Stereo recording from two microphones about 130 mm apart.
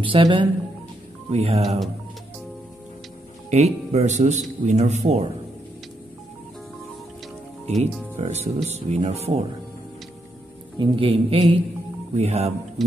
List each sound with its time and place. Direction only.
0.0 s speech: 40° right (ahead or behind)
1.3 s a man's voice: 50° right (ahead or behind)
3.4 s speech: 60° right (ahead or behind)
7.6 s speech: 55° right (ahead or behind)
10.8 s a man's voice: 45° right (ahead or behind)